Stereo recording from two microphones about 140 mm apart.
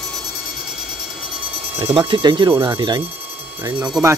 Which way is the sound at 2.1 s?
35° right (ahead or behind).